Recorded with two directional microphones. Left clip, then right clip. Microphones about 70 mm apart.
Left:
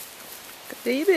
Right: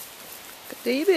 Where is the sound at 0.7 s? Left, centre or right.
Centre.